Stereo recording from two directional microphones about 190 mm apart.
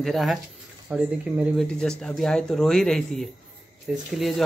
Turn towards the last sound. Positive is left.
turn(degrees=0)  # may be behind; listen again after turning